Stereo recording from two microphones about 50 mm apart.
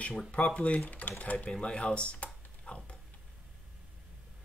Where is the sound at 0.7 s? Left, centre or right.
Left.